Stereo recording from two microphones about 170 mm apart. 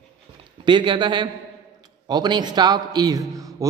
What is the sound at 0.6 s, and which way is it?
A man's voice, 30° right (ahead or behind).